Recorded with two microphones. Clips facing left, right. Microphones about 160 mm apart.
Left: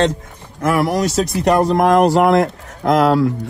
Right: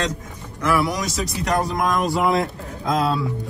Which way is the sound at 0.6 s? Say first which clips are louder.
Left 5 dB; 60° left (ahead or behind).